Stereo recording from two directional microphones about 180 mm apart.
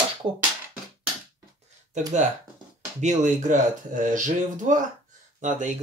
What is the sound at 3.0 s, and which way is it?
Speech, 40° right (ahead or behind).